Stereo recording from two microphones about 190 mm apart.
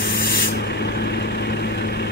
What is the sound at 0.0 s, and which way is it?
Spray, 70° left (ahead or behind).